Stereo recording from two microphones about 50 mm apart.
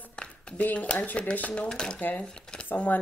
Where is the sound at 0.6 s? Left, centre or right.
Left.